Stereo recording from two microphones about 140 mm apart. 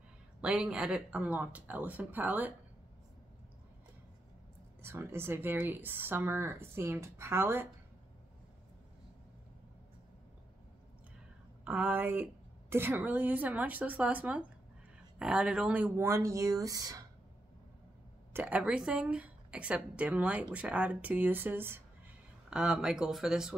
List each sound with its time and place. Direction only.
0.4 s a woman's voice: 5° right (ahead or behind)
4.8 s a woman's voice: 15° right (ahead or behind)
11.6 s a woman's voice: 10° right (ahead or behind)
16.1 s speech: 20° right (ahead or behind)
18.3 s a woman's voice: 10° right (ahead or behind)